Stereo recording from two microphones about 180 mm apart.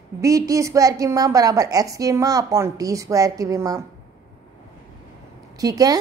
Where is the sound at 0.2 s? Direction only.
20° right (ahead or behind).